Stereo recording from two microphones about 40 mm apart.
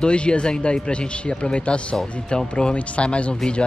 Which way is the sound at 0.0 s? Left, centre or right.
Left.